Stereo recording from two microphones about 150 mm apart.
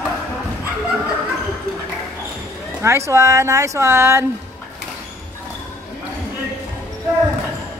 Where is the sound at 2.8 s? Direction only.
20° right (ahead or behind).